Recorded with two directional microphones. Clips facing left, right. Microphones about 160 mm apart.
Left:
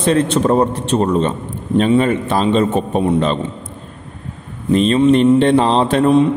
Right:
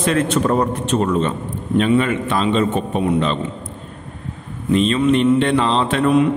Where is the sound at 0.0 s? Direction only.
30° left (ahead or behind).